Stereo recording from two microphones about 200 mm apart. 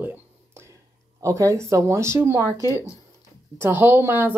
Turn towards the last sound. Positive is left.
turn(degrees=-10)  # may be behind; listen again after turning